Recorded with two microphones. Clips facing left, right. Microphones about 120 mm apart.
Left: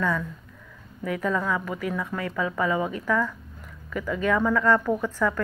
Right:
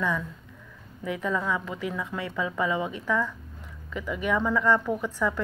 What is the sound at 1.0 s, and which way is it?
A woman's voice, 15° right (ahead or behind).